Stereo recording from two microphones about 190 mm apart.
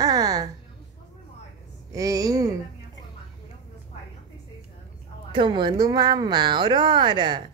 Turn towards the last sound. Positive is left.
turn(degrees=-25)  # may be behind; listen again after turning